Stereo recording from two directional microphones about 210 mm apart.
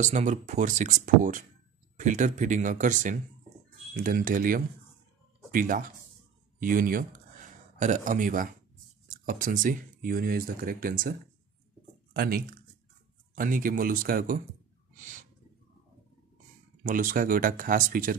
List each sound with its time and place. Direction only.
0.0 s speech: 35° right (ahead or behind)
15.0 s owl: 40° right (ahead or behind)
16.8 s speech: 40° right (ahead or behind)